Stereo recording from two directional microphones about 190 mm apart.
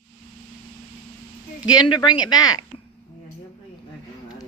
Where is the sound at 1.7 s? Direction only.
20° left (ahead or behind).